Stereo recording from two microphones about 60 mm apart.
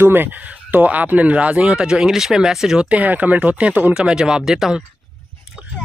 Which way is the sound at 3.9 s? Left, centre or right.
Centre.